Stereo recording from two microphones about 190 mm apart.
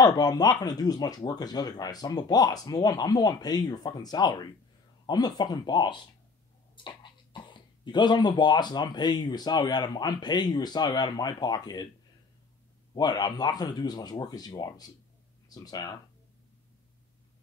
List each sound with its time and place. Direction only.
0.0 s speech: 20° left (ahead or behind)
12.9 s speech: 20° left (ahead or behind)